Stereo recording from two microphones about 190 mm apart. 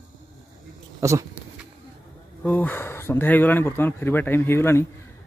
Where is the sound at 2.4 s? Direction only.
10° left (ahead or behind).